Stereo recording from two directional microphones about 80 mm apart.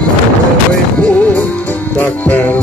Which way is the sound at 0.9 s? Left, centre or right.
Centre.